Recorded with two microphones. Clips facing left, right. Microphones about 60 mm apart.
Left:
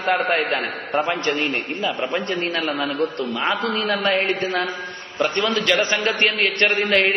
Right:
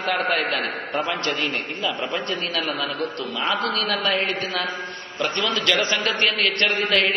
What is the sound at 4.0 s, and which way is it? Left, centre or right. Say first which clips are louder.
A man's voice: left 3 dB; left.